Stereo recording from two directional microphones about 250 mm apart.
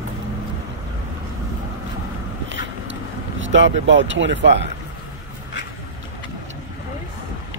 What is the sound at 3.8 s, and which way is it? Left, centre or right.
Speech, right.